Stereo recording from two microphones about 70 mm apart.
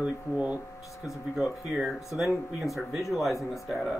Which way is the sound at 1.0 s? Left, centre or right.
Centre.